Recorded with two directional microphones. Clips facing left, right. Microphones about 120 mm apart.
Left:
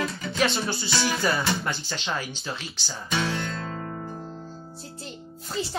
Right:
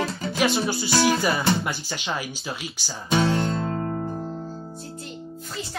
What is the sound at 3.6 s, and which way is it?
Music, 35° right (ahead or behind).